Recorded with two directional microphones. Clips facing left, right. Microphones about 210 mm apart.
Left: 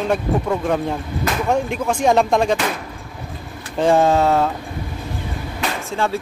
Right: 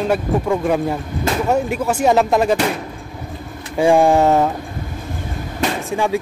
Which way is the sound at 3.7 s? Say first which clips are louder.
Right 2 dB; 10° right (ahead or behind).